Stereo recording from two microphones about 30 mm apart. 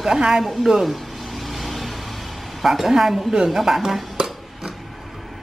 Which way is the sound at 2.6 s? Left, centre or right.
Centre.